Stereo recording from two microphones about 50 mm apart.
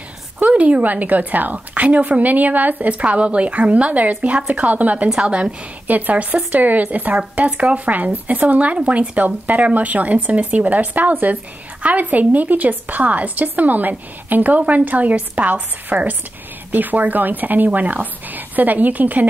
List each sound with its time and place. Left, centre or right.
0.4 s a woman's voice: right
5.9 s a woman's voice: right